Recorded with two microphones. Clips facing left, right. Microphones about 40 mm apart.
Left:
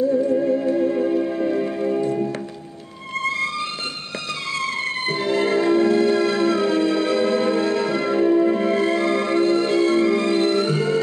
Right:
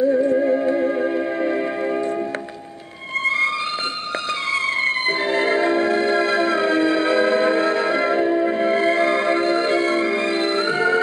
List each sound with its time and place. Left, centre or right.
0.0 s music: right
3.3 s music: centre